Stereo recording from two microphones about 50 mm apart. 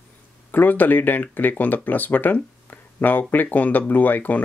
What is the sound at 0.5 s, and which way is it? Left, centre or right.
Speech, left.